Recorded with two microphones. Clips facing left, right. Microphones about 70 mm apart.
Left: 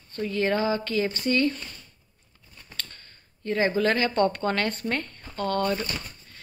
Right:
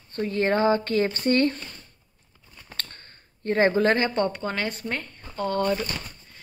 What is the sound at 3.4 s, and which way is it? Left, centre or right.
Speech, right.